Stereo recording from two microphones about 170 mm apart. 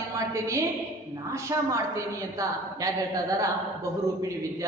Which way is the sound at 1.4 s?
20° right (ahead or behind).